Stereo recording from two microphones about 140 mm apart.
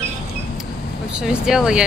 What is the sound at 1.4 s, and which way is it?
Speech, 5° right (ahead or behind).